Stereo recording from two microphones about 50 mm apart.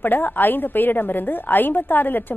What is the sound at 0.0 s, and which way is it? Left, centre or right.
A woman's voice, left.